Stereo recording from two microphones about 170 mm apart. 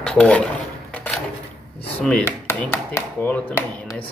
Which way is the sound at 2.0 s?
5° left (ahead or behind).